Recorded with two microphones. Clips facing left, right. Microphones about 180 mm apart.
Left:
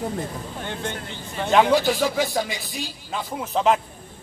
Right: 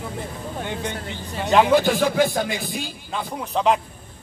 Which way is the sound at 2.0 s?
55° right (ahead or behind).